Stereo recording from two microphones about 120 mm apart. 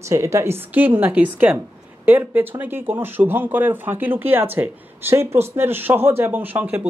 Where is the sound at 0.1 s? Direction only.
25° right (ahead or behind).